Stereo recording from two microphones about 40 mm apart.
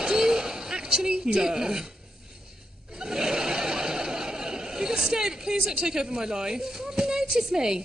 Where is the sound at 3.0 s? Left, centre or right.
Centre.